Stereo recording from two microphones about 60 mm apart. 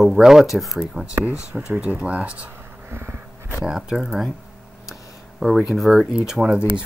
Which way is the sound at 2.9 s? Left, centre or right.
Right.